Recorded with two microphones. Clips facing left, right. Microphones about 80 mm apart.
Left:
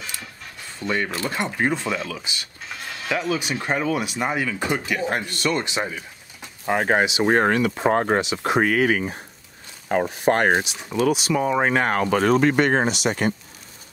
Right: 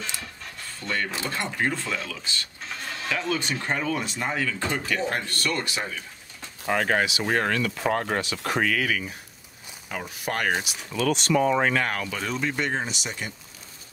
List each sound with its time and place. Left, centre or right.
0.8 s speech: centre
8.2 s speech: centre
8.6 s speech: left
10.6 s speech: left
11.7 s speech: left
12.1 s speech: left